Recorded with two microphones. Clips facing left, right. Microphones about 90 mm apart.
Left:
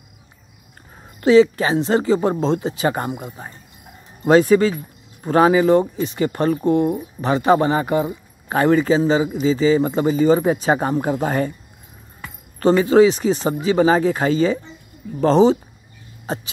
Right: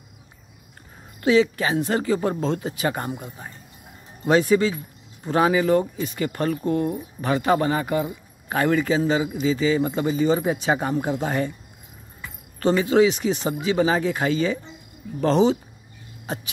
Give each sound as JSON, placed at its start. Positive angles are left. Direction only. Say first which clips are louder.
{"t": 1.2, "sound": "speech", "louder": "left 6 dB", "side_deg": 35}
{"t": 4.3, "sound": "speech", "louder": "left 5 dB", "side_deg": 40}
{"t": 12.5, "sound": "speech", "louder": "left 5 dB", "side_deg": 40}